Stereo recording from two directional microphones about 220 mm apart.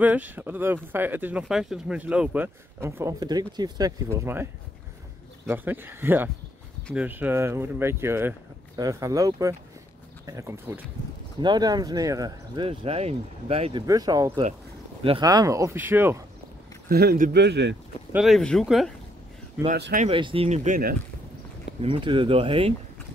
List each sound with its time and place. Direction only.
0.0 s speech: 5° right (ahead or behind)
5.5 s speech: 10° right (ahead or behind); by 13.8 s 25° right (ahead or behind)
13.8 s speech: 15° right (ahead or behind)
16.9 s speech: 45° right (ahead or behind)
18.1 s speech: centre (ahead or behind)
19.8 s speech: 40° right (ahead or behind)
20.1 s speech: 25° right (ahead or behind)
21.8 s speech: 25° right (ahead or behind)